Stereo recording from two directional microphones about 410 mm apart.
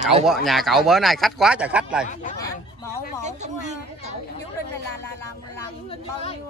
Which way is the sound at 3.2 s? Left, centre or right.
Centre.